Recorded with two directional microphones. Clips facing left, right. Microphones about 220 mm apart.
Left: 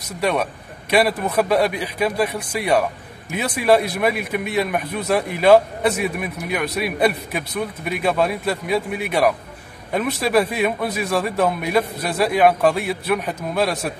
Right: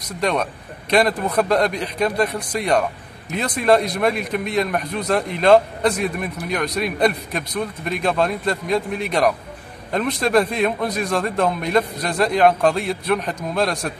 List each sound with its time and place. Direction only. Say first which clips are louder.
0.2 s a man's voice: even; 5° left (ahead or behind)